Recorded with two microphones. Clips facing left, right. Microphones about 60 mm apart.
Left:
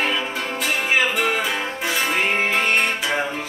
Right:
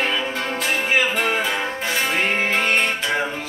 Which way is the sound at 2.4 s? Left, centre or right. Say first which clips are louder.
Even; centre.